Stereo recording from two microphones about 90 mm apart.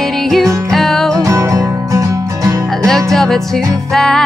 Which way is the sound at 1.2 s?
35° right (ahead or behind).